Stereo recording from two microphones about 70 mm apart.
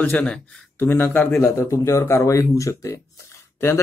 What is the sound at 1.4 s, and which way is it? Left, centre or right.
Speech, left.